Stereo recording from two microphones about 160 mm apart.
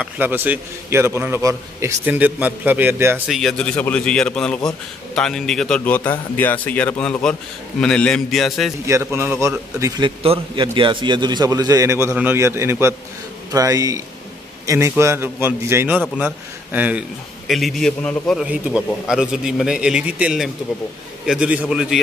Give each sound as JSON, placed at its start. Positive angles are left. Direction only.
{"t": 0.0, "sound": "a man's voice", "side_deg": -10}
{"t": 3.3, "sound": "a man's voice", "side_deg": 0}
{"t": 8.8, "sound": "a man's voice", "side_deg": -15}
{"t": 10.0, "sound": "a man's voice", "side_deg": -35}
{"t": 18.5, "sound": "a man's voice", "side_deg": -5}